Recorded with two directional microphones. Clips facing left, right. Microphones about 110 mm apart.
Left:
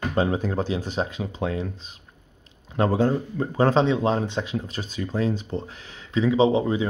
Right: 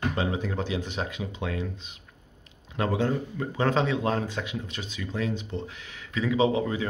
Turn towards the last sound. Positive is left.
turn(degrees=25)  # may be behind; listen again after turning